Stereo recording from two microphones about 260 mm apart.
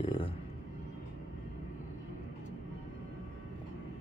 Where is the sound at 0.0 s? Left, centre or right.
Centre.